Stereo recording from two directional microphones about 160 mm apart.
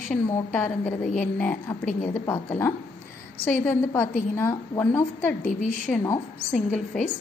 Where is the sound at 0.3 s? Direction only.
10° left (ahead or behind).